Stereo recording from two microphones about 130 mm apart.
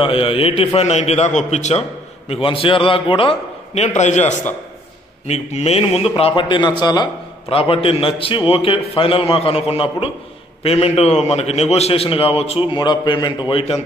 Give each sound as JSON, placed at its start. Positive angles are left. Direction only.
{"t": 0.0, "sound": "a man's voice", "side_deg": 45}
{"t": 7.4, "sound": "a man's voice", "side_deg": 45}
{"t": 13.5, "sound": "a man's voice", "side_deg": 45}